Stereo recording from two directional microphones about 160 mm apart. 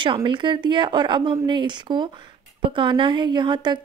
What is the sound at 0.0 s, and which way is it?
A woman's voice, 30° right (ahead or behind).